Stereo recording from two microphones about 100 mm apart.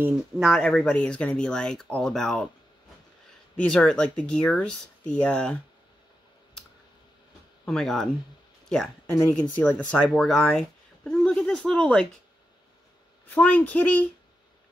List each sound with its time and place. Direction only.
0.4 s speech: centre (ahead or behind)
3.6 s speech: 10° left (ahead or behind)
7.6 s speech: 5° left (ahead or behind)
11.1 s a sound: 5° left (ahead or behind)
13.3 s speech: 15° left (ahead or behind)